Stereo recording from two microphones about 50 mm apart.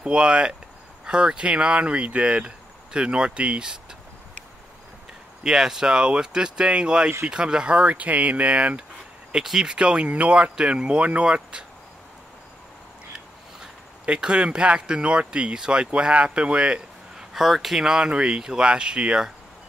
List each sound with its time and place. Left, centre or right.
0.0 s speech: centre
5.4 s speech: centre
9.3 s speech: centre; by 10.5 s right
10.5 s speech: centre
14.0 s speech: centre
17.3 s speech: centre